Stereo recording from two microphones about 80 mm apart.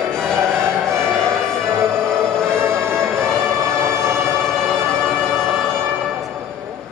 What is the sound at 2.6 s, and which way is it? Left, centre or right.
Music, right.